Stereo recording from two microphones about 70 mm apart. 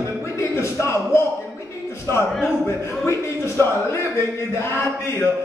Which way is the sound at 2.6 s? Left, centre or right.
Left.